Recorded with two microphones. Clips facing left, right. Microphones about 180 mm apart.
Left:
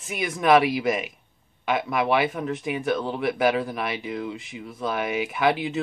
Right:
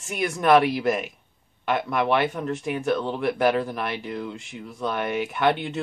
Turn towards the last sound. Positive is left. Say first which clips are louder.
# even
turn(degrees=0)  # may be behind; listen again after turning